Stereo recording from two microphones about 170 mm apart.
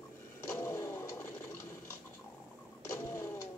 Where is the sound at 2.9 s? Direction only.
20° left (ahead or behind).